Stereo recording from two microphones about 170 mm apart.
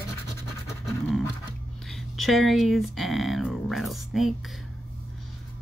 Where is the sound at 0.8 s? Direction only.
Centre (ahead or behind).